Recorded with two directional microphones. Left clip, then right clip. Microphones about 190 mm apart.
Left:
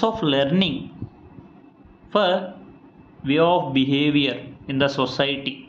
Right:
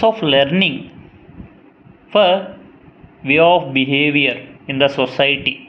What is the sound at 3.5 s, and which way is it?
Speech, 40° left (ahead or behind).